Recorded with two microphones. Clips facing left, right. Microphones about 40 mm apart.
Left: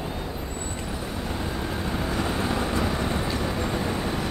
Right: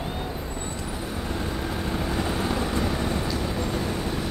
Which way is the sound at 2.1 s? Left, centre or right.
Centre.